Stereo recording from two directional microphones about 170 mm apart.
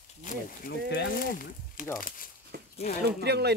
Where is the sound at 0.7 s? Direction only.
70° left (ahead or behind).